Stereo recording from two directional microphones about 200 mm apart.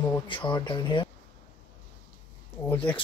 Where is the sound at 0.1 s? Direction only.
25° left (ahead or behind).